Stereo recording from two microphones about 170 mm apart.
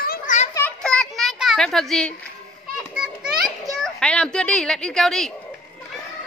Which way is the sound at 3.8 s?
5° left (ahead or behind).